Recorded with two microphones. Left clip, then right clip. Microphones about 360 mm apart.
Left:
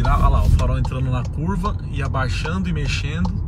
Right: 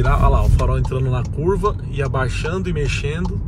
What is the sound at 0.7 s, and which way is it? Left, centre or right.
Speech, right.